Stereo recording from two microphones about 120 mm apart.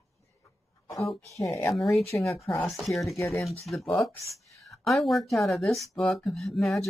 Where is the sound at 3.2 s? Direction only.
25° left (ahead or behind).